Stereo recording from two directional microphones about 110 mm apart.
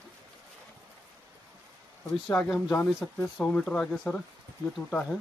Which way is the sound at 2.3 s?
15° left (ahead or behind).